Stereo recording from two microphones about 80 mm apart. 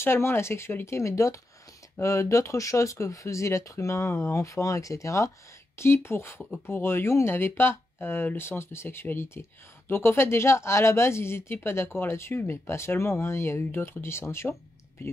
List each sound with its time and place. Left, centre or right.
0.0 s speech: left